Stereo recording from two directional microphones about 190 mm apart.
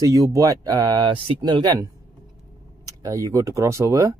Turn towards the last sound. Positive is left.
turn(degrees=-15)  # may be behind; listen again after turning